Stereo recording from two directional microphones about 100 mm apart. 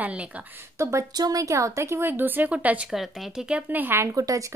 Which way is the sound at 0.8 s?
30° right (ahead or behind).